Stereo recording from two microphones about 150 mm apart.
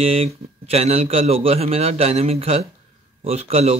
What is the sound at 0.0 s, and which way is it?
A man's voice, 40° right (ahead or behind).